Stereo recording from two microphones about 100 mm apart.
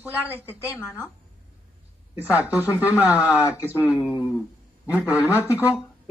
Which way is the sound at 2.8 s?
15° right (ahead or behind).